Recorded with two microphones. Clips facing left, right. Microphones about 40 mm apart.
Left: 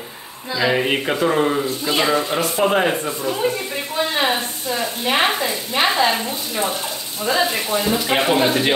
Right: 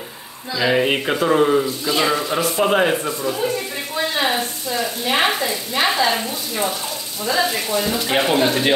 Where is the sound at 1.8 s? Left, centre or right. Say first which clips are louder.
Left 1 dB; left.